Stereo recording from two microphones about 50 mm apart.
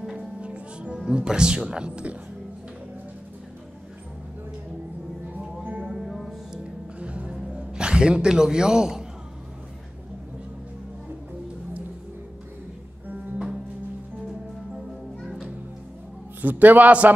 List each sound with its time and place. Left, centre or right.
0.0 s music: centre
0.4 s speech: right
5.6 s music: right
5.9 s a sound: centre
6.5 s music: right
7.5 s a man's voice: centre
15.1 s music: centre
16.3 s a man's voice: right